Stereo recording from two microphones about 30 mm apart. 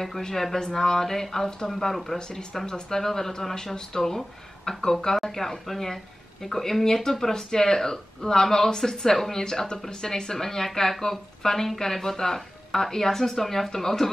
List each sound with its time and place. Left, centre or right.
0.2 s speech: centre
2.1 s speech: left